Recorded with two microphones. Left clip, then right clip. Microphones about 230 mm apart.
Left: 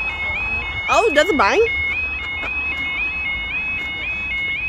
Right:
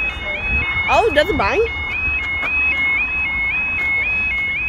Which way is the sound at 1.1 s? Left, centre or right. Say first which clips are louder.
Left 1 dB; left.